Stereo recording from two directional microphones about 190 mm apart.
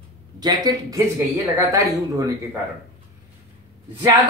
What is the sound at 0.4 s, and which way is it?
Speech, 20° right (ahead or behind).